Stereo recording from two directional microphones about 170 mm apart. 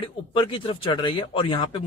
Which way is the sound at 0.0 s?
30° left (ahead or behind).